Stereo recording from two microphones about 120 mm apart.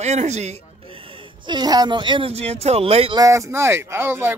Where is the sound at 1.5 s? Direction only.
35° right (ahead or behind); by 3.1 s 55° right (ahead or behind).